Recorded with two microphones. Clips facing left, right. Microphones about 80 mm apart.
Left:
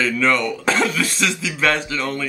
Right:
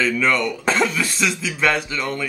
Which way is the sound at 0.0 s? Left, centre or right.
Centre.